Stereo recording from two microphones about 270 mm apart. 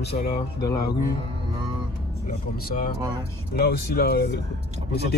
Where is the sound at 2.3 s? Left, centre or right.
Left.